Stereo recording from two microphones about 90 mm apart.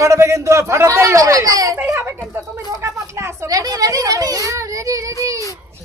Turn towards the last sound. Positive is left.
turn(degrees=-40)  # may be behind; listen again after turning